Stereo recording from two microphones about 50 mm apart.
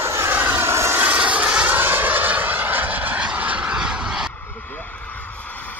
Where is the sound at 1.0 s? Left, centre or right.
Right.